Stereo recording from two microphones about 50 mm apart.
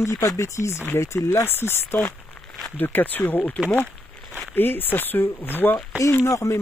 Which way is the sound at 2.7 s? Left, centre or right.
Left.